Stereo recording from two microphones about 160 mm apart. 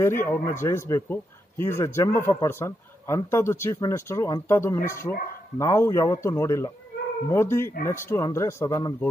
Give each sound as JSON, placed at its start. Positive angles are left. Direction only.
{"t": 0.0, "sound": "a man's voice", "side_deg": 15}